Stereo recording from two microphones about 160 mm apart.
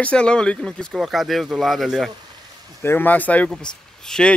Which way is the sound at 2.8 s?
15° left (ahead or behind).